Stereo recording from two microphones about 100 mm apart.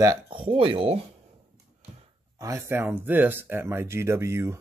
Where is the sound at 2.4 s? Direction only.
30° right (ahead or behind).